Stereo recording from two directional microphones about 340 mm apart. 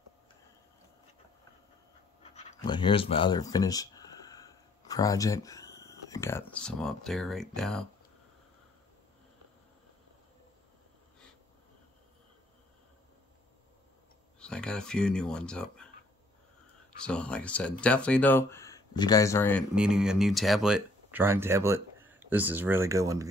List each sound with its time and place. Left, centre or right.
2.3 s speech: centre
14.4 s speech: centre
17.0 s speech: centre